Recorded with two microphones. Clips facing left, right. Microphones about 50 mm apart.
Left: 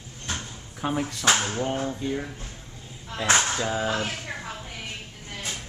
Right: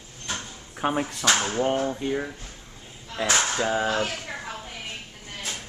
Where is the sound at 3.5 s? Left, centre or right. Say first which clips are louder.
Right 2 dB; centre.